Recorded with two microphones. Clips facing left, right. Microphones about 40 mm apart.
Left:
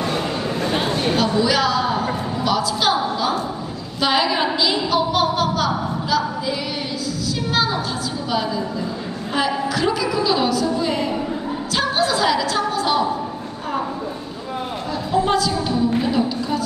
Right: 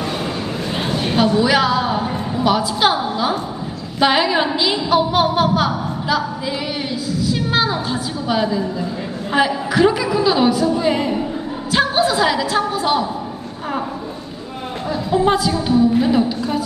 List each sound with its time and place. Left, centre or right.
1.1 s a sound: centre
8.3 s a woman's voice: centre
15.1 s a woman's voice: centre